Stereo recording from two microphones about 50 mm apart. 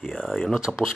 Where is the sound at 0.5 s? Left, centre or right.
Centre.